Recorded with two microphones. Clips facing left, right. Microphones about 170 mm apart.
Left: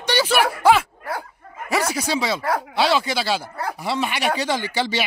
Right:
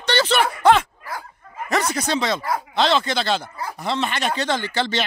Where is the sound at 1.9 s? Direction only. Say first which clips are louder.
Right 1 dB; 5° left (ahead or behind).